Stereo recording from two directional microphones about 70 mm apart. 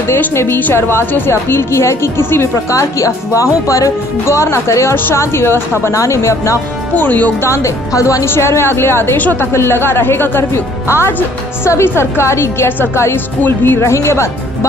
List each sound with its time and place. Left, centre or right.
0.3 s a woman's voice: left
2.7 s a woman's voice: left
7.0 s speech: left
7.4 s speech: left
8.3 s a woman's voice: left